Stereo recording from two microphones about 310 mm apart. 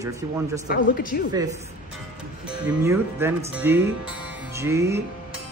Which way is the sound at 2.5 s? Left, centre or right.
Centre.